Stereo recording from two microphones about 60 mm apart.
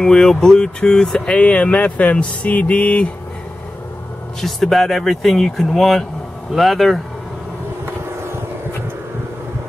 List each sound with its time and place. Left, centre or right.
0.0 s speech: centre
4.4 s speech: centre